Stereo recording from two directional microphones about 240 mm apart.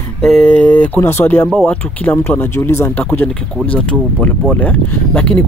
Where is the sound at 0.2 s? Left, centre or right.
Centre.